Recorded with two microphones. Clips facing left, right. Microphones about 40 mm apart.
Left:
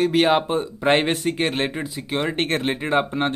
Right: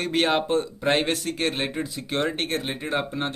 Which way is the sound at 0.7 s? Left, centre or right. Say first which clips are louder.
Left 4 dB; left.